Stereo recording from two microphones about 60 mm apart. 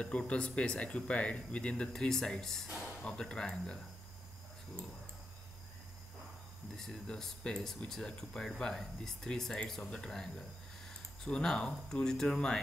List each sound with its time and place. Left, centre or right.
0.3 s speech: centre
3.0 s speech: centre
6.8 s speech: centre